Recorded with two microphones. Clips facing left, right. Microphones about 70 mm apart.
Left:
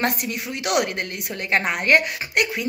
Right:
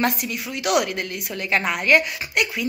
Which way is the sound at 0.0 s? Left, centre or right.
Left.